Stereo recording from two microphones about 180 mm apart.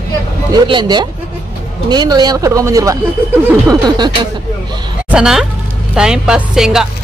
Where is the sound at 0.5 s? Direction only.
25° right (ahead or behind).